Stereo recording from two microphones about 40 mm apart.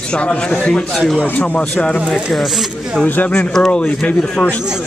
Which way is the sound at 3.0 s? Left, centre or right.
Left.